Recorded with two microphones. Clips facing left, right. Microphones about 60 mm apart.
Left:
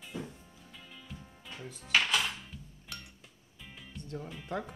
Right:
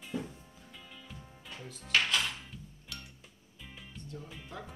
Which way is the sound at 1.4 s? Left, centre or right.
Centre.